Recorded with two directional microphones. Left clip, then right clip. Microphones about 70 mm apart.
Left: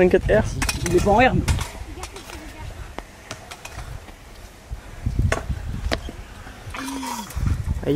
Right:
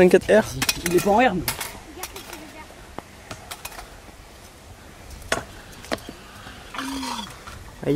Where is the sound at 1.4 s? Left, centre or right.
Right.